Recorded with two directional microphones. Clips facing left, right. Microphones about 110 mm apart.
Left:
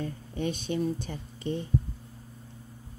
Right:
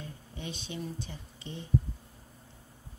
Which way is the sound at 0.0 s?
50° left (ahead or behind).